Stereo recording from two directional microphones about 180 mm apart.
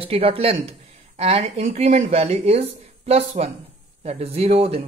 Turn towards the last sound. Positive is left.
turn(degrees=-35)  # may be behind; listen again after turning